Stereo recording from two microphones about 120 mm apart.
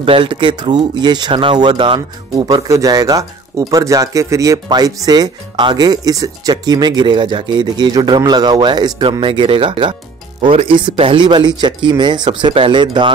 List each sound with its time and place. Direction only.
0.0 s speech: 50° right (ahead or behind)
2.4 s speech: 30° right (ahead or behind)
9.2 s speech: 45° right (ahead or behind)